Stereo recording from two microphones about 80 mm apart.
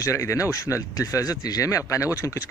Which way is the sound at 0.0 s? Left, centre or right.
Left.